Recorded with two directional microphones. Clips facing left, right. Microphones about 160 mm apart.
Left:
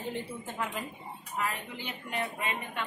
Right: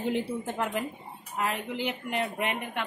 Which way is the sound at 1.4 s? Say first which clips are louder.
Right 5 dB; 80° right.